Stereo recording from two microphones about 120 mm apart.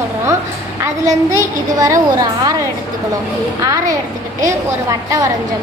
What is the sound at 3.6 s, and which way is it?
A woman's voice, 25° right (ahead or behind).